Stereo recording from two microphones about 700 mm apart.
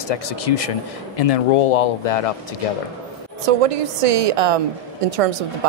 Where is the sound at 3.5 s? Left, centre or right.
Right.